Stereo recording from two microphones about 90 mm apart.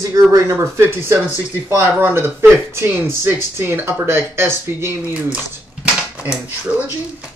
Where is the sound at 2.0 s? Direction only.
25° right (ahead or behind).